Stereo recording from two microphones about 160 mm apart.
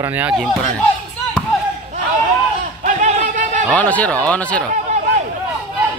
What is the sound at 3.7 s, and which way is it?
Speech, 10° left (ahead or behind).